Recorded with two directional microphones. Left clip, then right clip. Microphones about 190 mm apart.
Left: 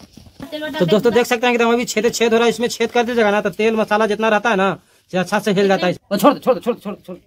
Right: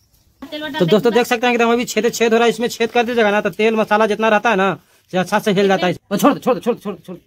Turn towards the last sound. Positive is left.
turn(degrees=-60)  # may be behind; listen again after turning